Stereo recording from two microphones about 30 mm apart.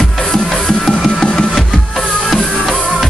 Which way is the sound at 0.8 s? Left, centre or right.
Centre.